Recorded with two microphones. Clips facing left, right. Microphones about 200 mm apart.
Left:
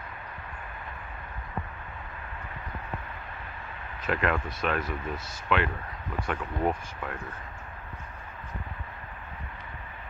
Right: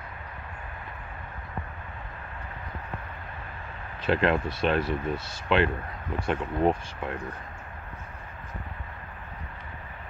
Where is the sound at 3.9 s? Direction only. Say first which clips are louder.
Right 4 dB; 30° right (ahead or behind).